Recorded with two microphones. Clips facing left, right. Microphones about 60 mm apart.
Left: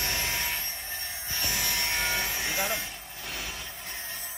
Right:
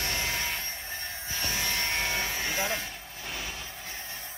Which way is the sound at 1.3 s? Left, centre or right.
Centre.